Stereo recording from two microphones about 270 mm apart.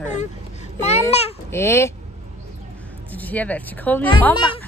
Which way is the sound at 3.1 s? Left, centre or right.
Centre.